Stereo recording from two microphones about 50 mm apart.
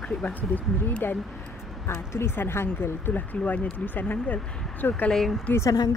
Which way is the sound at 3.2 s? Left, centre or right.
Left.